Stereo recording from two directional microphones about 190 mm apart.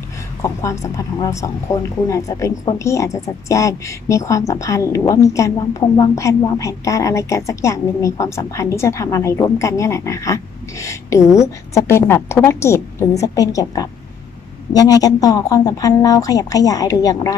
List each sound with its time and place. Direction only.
0.4 s speech: 15° left (ahead or behind)